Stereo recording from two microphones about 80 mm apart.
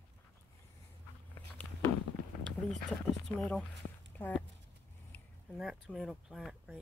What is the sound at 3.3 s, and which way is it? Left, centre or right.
Speech, centre.